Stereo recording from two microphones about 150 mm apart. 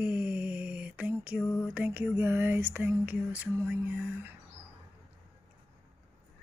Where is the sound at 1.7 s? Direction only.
10° right (ahead or behind).